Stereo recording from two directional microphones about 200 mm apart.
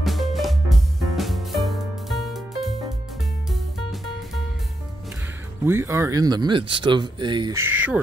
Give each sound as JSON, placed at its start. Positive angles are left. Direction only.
{"t": 0.0, "sound": "music", "side_deg": 0}
{"t": 5.7, "sound": "speech", "side_deg": -10}